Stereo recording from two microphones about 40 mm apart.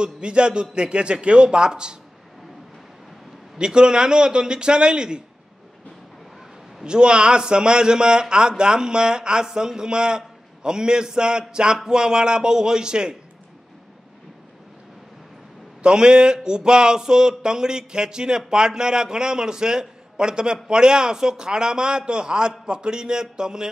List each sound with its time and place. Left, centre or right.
0.0 s a man's voice: right
3.5 s a man's voice: right
6.8 s a man's voice: right
15.8 s a man's voice: right